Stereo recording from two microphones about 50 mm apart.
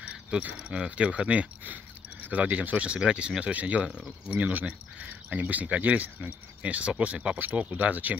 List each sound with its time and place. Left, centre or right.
0.4 s speech: right
3.0 s speech: centre; by 8.2 s right